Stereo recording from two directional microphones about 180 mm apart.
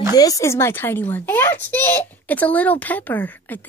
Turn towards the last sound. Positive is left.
turn(degrees=10)  # may be behind; listen again after turning